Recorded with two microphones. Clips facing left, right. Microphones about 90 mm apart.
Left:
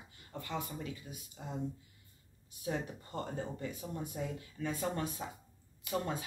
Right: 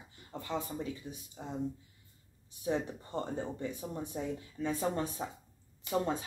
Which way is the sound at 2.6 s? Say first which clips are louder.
Right 4 dB; 20° right (ahead or behind).